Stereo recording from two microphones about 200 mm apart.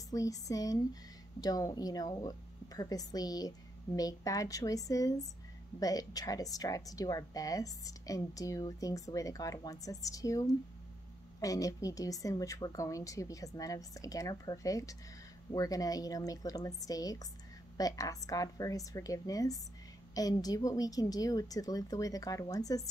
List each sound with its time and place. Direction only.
0.1 s speech: 15° left (ahead or behind)